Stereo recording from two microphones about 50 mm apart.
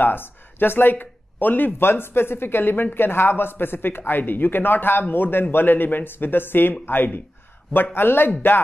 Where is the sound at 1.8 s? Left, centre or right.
Left.